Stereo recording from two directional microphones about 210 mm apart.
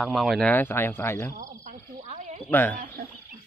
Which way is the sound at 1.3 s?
40° right (ahead or behind).